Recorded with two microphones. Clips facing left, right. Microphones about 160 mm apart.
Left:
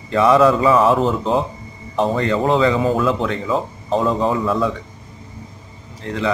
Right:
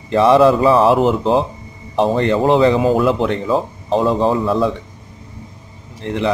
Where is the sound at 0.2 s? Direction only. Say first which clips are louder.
Right 2 dB; 30° right (ahead or behind).